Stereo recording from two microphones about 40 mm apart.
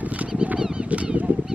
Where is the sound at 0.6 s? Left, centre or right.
Right.